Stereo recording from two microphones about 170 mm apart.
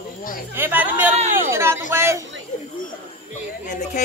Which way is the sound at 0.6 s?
10° right (ahead or behind).